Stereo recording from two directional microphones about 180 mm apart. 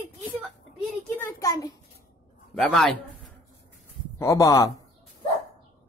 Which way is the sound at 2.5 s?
5° left (ahead or behind).